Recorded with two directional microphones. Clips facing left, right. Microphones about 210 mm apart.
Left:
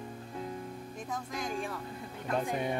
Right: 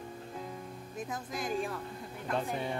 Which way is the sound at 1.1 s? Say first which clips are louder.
Right 1 dB; 5° right (ahead or behind).